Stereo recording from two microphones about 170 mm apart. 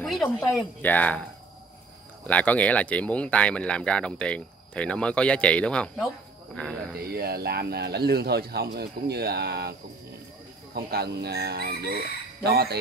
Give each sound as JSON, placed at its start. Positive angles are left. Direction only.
{"t": 0.0, "sound": "speech", "side_deg": 0}
{"t": 2.2, "sound": "speech", "side_deg": 10}
{"t": 7.1, "sound": "speech", "side_deg": -65}